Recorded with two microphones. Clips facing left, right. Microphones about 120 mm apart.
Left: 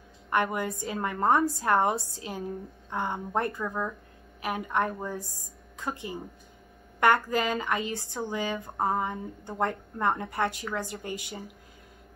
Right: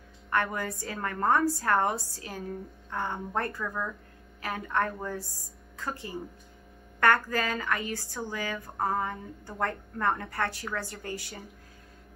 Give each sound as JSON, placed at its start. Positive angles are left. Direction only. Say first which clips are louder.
{"t": 0.3, "sound": "a woman's voice", "louder": "left 2 dB", "side_deg": 20}